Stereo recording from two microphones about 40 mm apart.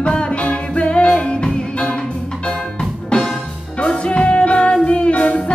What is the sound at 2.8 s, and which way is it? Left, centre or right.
Music, centre.